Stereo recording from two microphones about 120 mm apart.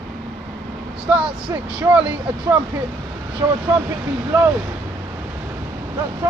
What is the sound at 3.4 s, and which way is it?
Speech, 25° right (ahead or behind).